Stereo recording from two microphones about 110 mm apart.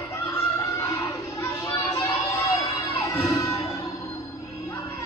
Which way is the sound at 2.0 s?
25° left (ahead or behind).